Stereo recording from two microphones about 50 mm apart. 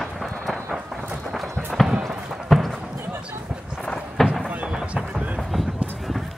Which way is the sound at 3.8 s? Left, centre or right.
Centre.